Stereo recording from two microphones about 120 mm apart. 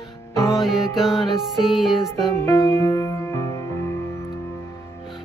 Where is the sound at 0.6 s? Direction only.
5° right (ahead or behind).